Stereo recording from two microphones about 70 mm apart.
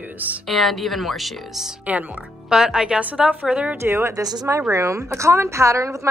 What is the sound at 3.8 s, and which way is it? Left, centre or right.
A woman's voice, right.